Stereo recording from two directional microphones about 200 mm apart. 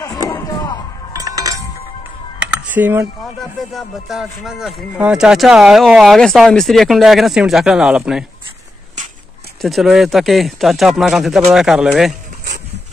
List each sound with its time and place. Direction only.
1.1 s chink: 20° right (ahead or behind)
2.4 s computer keyboard: 10° right (ahead or behind)
3.7 s speech: centre (ahead or behind)
9.6 s speech: centre (ahead or behind)